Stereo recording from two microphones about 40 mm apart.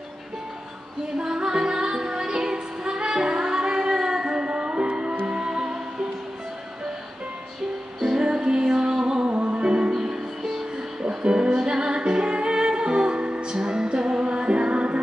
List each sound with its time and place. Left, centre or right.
1.1 s music: centre
8.0 s music: centre
9.9 s music: centre; by 15.0 s right